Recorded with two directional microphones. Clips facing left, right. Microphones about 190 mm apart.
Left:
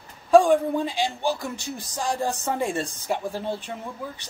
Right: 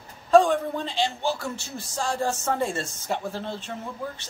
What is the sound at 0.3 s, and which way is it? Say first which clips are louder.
Speech: left 2 dB; 10° left (ahead or behind).